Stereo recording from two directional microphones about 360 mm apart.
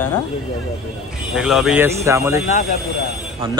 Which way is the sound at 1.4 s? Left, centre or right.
Centre.